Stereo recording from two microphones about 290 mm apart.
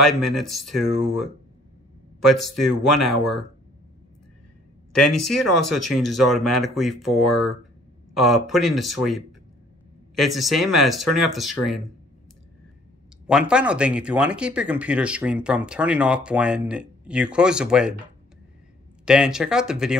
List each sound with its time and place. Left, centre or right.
0.6 s speech: centre
2.1 s a man's voice: left
2.5 s speech: centre
3.1 s speech: left
4.9 s speech: left
5.9 s speech: centre
13.3 s speech: centre
19.0 s speech: centre